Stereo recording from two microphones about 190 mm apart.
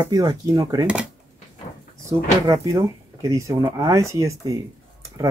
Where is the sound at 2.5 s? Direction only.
15° right (ahead or behind).